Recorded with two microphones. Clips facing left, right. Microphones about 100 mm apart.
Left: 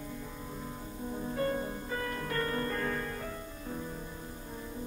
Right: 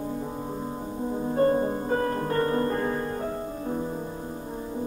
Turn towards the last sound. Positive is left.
turn(degrees=-30)  # may be behind; listen again after turning